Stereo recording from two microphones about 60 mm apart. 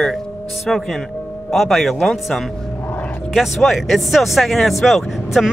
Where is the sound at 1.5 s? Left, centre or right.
Centre.